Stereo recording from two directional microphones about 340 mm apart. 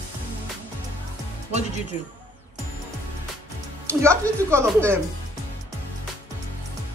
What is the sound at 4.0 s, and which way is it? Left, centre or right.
Speech, centre.